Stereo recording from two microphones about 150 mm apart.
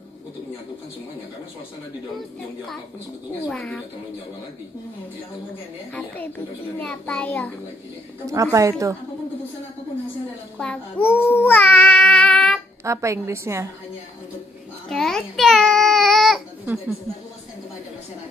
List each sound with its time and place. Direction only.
3.4 s a woman's voice: 5° left (ahead or behind)
5.9 s a child's voice: 10° left (ahead or behind)
8.3 s a woman's voice: 20° right (ahead or behind)
10.6 s speech: 10° left (ahead or behind)
12.8 s a woman's voice: 20° right (ahead or behind)
14.9 s baby cry: 5° left (ahead or behind)